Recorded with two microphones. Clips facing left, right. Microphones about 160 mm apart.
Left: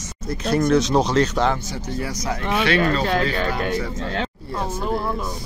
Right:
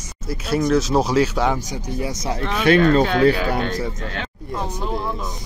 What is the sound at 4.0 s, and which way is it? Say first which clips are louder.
Speech: left 4 dB; 35° left (ahead or behind).